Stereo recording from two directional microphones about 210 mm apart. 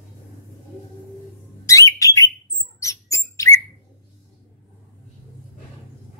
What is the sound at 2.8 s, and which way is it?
Mouse, 15° left (ahead or behind).